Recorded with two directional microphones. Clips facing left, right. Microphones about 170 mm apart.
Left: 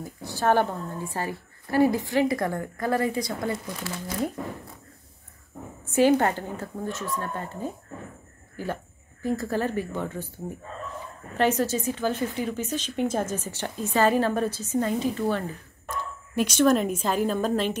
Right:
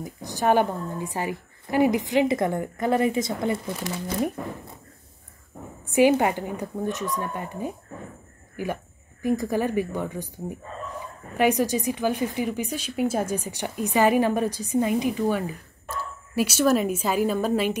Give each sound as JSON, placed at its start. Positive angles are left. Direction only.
{"t": 0.0, "sound": "a woman's voice", "side_deg": -15}
{"t": 5.9, "sound": "a woman's voice", "side_deg": -15}